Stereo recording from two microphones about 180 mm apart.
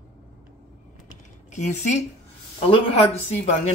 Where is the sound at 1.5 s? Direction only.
40° left (ahead or behind).